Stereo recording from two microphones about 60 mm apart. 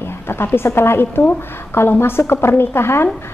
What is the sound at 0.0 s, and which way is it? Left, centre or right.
A woman's voice, left.